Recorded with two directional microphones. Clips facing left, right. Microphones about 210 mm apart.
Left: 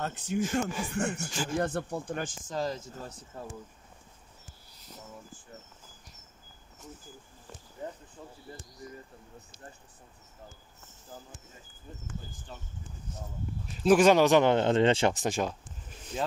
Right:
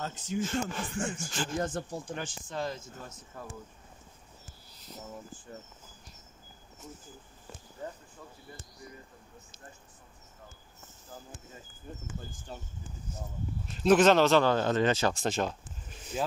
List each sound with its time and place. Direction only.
0.0 s speech: 65° left (ahead or behind)
0.4 s speech: 10° left (ahead or behind)
0.9 s speech: 65° left (ahead or behind); by 3.4 s 35° left (ahead or behind)
7.8 s speech: 15° left (ahead or behind)
11.9 s speech: 55° right (ahead or behind)
12.5 s speech: 40° right (ahead or behind)
13.8 s speech: 10° left (ahead or behind); by 15.1 s 25° left (ahead or behind)
15.1 s speech: 10° left (ahead or behind)
16.1 s speech: 5° right (ahead or behind)